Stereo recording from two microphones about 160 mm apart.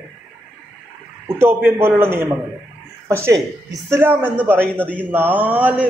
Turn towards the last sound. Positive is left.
turn(degrees=-10)  # may be behind; listen again after turning